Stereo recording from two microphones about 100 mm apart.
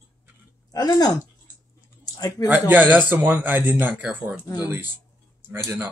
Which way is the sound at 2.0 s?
40° left (ahead or behind).